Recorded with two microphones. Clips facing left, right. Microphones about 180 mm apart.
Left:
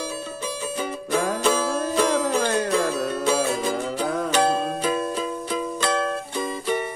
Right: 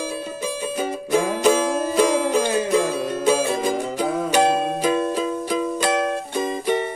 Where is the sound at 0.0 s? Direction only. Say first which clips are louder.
Right 3 dB; 10° right (ahead or behind).